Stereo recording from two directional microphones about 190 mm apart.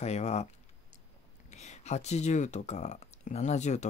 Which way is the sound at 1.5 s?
35° left (ahead or behind).